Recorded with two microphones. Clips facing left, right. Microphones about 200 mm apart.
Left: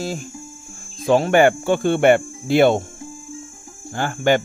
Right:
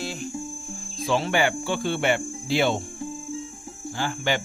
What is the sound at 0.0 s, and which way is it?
Speech, 45° left (ahead or behind).